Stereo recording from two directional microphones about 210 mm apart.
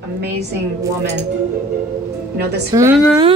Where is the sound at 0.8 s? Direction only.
55° right (ahead or behind).